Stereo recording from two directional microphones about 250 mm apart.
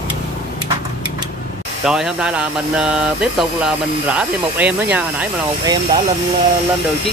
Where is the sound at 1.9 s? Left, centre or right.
Centre.